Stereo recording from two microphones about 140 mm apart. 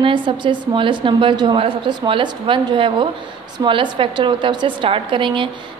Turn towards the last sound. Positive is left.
turn(degrees=-35)  # may be behind; listen again after turning